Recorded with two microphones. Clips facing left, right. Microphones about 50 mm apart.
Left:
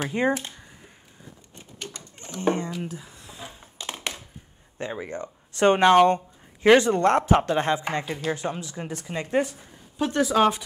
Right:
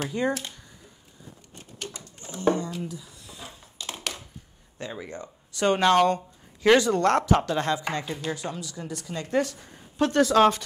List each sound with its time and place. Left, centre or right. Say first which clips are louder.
0.0 s speech: left 3 dB; left
2.0 s a sound: left 2 dB; left
4.7 s speech: left 4 dB; left